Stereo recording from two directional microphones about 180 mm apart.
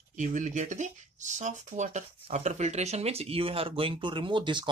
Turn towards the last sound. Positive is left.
turn(degrees=-25)  # may be behind; listen again after turning